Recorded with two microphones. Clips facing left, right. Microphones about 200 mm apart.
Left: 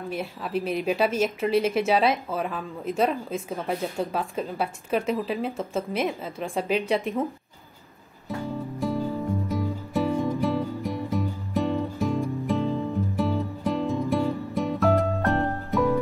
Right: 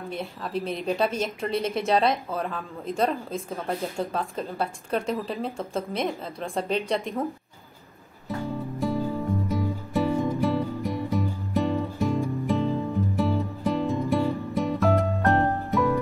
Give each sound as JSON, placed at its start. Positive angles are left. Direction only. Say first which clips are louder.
{"t": 0.1, "sound": "a woman's voice", "louder": "left 2 dB", "side_deg": 5}
{"t": 8.3, "sound": "music", "louder": "even", "side_deg": 0}